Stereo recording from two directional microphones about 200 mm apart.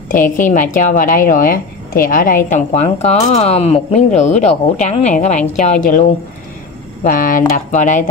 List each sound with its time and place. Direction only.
0.1 s a woman's voice: 40° left (ahead or behind)